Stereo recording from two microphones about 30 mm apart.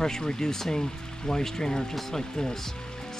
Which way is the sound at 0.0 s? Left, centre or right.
Left.